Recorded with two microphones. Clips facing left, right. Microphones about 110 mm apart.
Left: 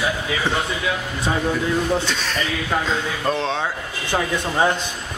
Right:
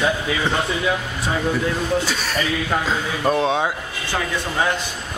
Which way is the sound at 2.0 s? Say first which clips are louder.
Right 1 dB; 5° right (ahead or behind).